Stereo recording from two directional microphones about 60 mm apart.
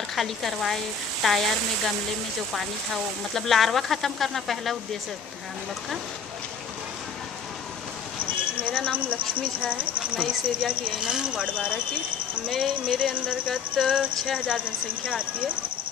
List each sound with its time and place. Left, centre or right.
0.1 s speech: centre
3.3 s speech: centre
8.5 s speech: centre